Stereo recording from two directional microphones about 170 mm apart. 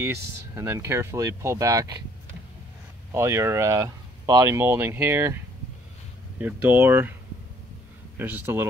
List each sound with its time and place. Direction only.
0.0 s speech: 15° right (ahead or behind)
3.1 s speech: 15° right (ahead or behind)
6.4 s speech: 10° right (ahead or behind)
8.2 s speech: 10° right (ahead or behind)